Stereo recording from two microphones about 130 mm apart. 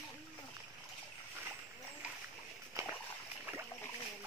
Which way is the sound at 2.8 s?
25° right (ahead or behind).